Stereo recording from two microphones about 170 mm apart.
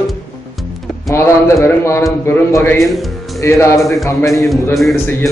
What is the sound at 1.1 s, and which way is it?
A man's voice, 15° left (ahead or behind).